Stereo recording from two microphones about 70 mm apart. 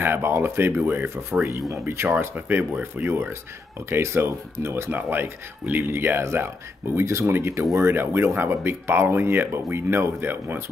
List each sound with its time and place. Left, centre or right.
0.0 s speech: right
1.4 s speech: right
2.1 s speech: right
2.8 s speech: right